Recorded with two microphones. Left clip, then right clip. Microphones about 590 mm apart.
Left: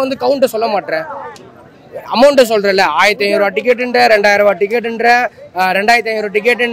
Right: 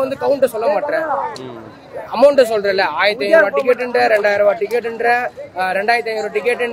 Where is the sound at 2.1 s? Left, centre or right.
Left.